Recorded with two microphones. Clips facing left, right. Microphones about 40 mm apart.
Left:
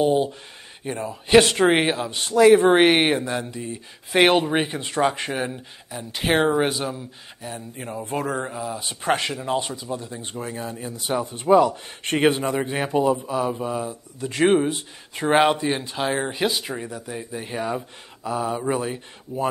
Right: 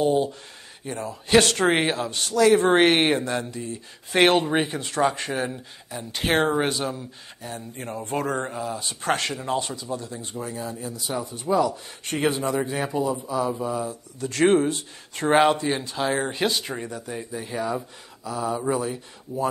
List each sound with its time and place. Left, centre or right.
0.0 s a man's voice: centre
10.9 s a man's voice: left
12.4 s a man's voice: left; by 17.3 s centre
17.4 s a man's voice: left